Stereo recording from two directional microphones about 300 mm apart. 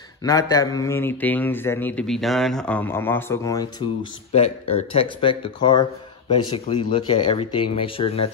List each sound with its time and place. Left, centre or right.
0.2 s speech: centre
4.3 s speech: left